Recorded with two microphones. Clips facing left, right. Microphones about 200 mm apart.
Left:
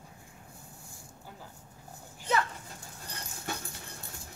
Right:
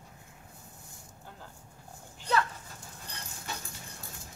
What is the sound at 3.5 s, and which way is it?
Dog, 55° left (ahead or behind).